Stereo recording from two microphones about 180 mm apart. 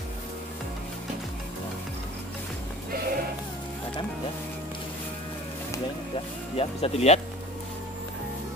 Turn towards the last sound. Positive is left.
turn(degrees=35)  # may be behind; listen again after turning